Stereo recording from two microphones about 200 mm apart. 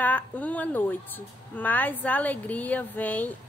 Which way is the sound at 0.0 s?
10° left (ahead or behind).